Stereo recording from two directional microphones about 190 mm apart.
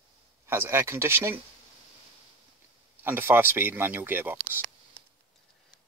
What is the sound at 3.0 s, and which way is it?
Speech, 10° right (ahead or behind).